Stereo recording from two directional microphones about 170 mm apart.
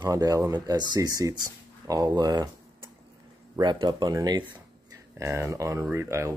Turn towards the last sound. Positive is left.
turn(degrees=-15)  # may be behind; listen again after turning